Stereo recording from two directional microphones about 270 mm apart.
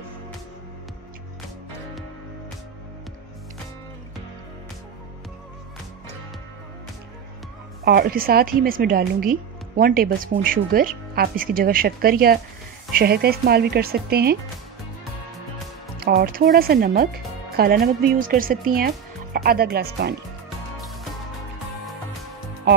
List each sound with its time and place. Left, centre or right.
7.8 s a woman's voice: right
16.0 s a woman's voice: right
20.4 s music: centre